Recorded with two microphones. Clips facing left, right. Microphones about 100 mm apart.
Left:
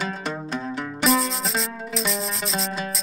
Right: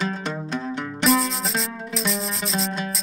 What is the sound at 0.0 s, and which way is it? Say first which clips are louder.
Music: right 1 dB; centre (ahead or behind).